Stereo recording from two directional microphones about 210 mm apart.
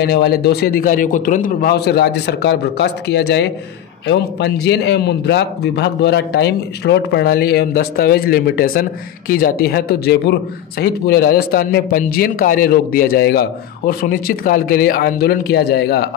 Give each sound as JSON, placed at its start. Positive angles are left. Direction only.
{"t": 0.0, "sound": "a man's voice", "side_deg": 50}